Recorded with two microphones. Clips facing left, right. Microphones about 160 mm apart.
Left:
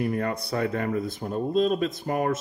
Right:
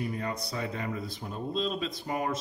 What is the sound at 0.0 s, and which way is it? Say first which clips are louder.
Speech: left 7 dB; 60° left (ahead or behind).